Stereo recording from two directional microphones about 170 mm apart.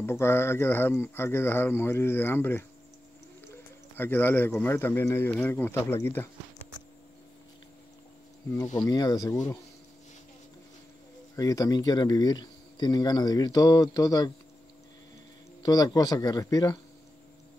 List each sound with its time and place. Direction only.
0.0 s speech: 15° left (ahead or behind)
3.9 s speech: 10° left (ahead or behind)
8.7 s speech: 25° left (ahead or behind)
11.3 s speech: 20° left (ahead or behind)
15.6 s speech: 25° left (ahead or behind)